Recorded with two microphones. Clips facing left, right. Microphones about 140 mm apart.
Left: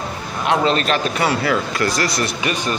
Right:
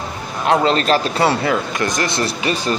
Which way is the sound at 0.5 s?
35° right (ahead or behind).